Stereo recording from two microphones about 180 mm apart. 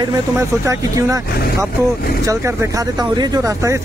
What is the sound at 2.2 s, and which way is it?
Speech, 15° right (ahead or behind).